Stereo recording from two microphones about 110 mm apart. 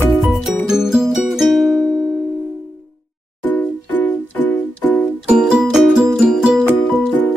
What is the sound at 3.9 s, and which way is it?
Music, 15° left (ahead or behind).